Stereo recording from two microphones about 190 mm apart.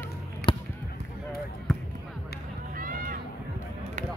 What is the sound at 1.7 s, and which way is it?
Basketball bounce, 5° left (ahead or behind).